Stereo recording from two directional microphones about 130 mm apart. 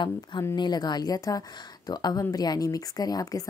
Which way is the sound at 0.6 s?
30° left (ahead or behind).